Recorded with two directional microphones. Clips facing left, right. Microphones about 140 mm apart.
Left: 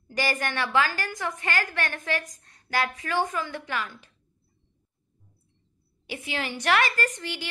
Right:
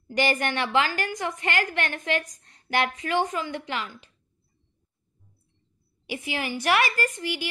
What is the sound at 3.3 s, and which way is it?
Speech, 15° right (ahead or behind).